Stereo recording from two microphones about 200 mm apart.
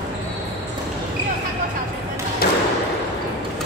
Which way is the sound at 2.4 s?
50° left (ahead or behind).